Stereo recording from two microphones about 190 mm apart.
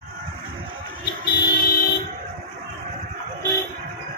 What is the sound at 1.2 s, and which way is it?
Vehicle, 55° left (ahead or behind).